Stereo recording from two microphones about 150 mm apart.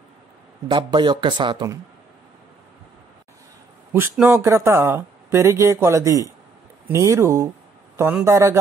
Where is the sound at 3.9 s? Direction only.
15° right (ahead or behind).